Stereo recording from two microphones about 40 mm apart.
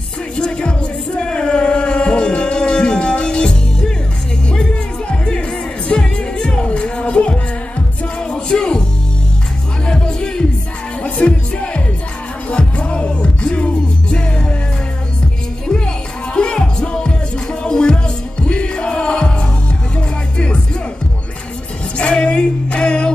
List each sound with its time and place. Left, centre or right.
0.4 s music: left
5.1 s music: centre
9.8 s music: centre
11.0 s music: left
16.3 s music: left
21.9 s music: left